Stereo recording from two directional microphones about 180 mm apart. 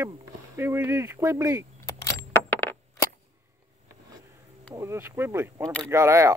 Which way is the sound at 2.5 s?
10° left (ahead or behind).